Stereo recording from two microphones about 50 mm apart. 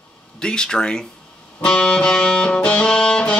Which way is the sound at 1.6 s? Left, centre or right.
Centre.